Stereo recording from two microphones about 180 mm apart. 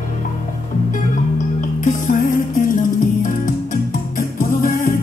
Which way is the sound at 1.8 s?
45° left (ahead or behind).